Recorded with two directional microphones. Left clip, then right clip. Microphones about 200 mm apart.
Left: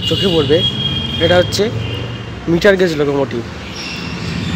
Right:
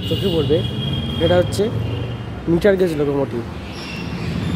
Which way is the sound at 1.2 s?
5° right (ahead or behind).